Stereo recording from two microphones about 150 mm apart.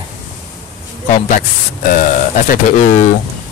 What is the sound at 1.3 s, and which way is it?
Speech, 60° left (ahead or behind).